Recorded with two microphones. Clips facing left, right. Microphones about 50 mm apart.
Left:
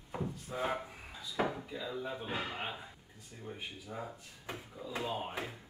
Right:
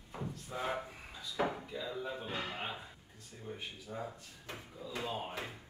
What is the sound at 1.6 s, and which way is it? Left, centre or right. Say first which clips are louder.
Speech: even; centre.